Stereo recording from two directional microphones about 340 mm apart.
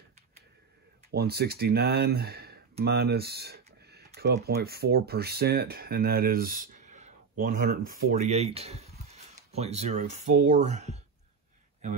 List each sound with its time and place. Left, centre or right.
1.1 s speech: right